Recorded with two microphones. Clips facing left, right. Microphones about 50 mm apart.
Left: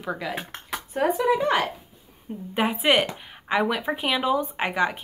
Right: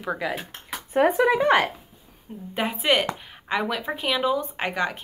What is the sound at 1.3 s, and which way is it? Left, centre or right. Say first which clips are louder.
Speech: right 2 dB; right.